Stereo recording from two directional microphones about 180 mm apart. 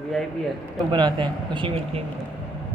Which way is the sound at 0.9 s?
25° right (ahead or behind).